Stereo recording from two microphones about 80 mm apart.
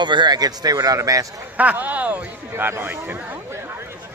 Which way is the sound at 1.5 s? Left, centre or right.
Right.